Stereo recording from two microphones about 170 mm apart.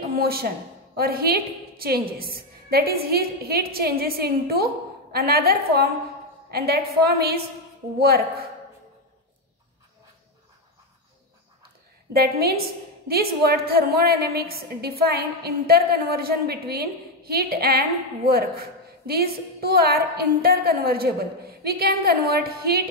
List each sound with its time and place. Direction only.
0.1 s a woman's voice: 65° right (ahead or behind)
12.1 s a woman's voice: 65° right (ahead or behind)